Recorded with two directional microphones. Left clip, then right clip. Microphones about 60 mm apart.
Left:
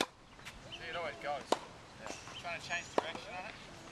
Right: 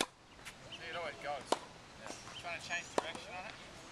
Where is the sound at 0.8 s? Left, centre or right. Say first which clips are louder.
Left 2 dB; centre.